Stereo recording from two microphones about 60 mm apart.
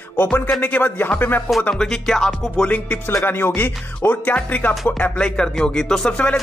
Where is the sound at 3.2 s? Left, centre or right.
Left.